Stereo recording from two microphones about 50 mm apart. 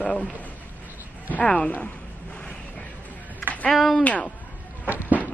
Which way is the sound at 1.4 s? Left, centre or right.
Centre.